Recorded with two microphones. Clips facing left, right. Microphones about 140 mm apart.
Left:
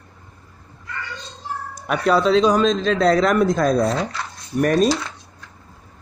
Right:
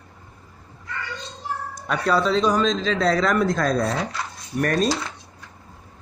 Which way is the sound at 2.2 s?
75° left (ahead or behind).